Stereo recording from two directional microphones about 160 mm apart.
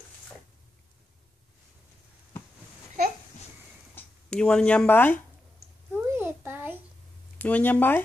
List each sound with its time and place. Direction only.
3.9 s speech: 5° left (ahead or behind)
5.9 s a sound: 15° right (ahead or behind)
7.3 s speech: 10° left (ahead or behind)